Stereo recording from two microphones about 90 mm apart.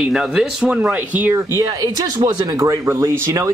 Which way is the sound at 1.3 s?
35° right (ahead or behind).